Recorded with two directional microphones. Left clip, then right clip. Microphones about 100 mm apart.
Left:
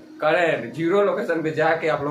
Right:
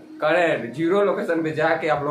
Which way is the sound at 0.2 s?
15° right (ahead or behind).